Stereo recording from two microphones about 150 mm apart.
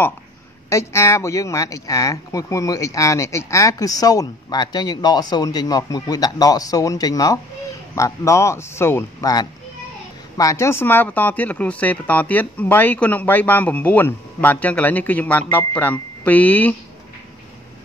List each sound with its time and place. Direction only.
0.7 s speech: 20° left (ahead or behind)